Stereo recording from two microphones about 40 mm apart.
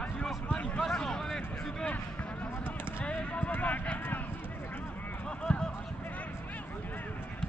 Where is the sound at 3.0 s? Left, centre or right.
Left.